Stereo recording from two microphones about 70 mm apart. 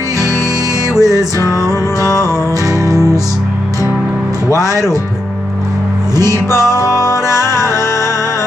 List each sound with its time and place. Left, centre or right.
0.9 s music: right
2.0 s music: left
6.7 s music: left